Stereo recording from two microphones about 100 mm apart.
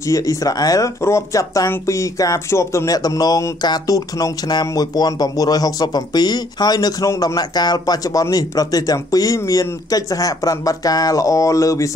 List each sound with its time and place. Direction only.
0.0 s speech: 35° left (ahead or behind)